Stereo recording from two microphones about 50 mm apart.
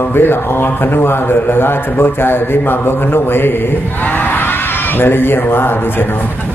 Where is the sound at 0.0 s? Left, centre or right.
Left.